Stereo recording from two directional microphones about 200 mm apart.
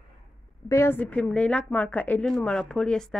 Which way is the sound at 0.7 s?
10° left (ahead or behind).